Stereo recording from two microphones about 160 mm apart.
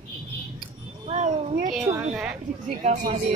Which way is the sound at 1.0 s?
45° right (ahead or behind).